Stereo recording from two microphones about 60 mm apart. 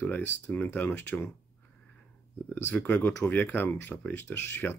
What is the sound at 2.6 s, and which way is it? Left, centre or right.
Speech, left.